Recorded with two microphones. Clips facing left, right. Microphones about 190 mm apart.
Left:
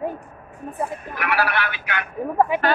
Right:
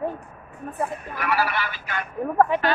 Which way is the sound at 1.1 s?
70° left (ahead or behind).